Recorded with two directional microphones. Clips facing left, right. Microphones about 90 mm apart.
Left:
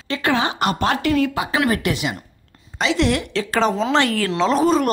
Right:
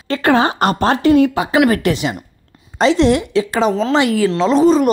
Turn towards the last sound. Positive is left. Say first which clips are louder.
# right 5 dB
turn(degrees=0)  # may be behind; listen again after turning